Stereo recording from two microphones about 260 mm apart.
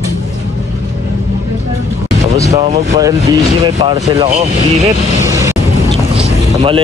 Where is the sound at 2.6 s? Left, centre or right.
Right.